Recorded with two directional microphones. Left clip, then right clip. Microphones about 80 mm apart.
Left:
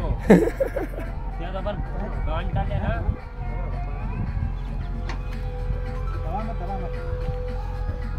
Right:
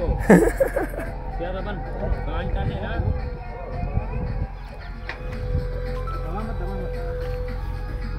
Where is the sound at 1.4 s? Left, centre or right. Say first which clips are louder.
Even; left.